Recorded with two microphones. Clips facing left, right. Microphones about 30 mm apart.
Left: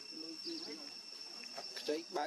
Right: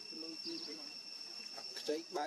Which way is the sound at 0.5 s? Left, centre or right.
Centre.